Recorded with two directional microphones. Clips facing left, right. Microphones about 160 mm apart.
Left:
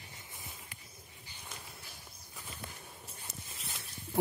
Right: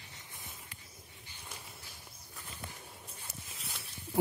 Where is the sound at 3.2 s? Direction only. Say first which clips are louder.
Left 2 dB; centre (ahead or behind).